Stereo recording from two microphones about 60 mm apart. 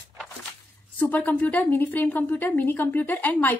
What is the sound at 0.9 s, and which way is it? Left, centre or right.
A woman's voice, left.